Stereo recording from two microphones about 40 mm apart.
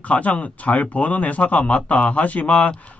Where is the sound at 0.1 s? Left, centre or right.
Left.